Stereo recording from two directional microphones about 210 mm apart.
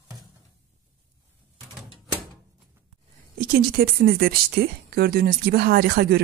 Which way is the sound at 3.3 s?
45° right (ahead or behind).